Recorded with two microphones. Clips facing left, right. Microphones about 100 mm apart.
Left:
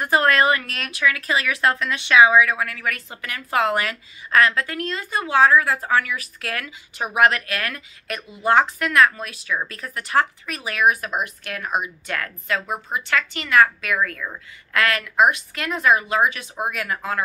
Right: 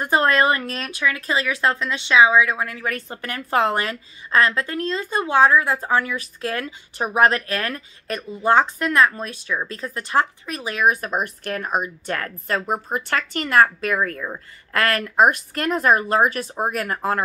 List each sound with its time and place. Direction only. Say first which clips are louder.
0.0 s a woman's voice: even; 30° right (ahead or behind)